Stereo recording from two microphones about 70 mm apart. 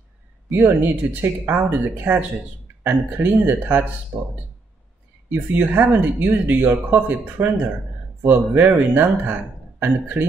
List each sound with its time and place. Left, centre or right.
0.5 s speech: right
4.1 s speech: right
5.3 s speech: right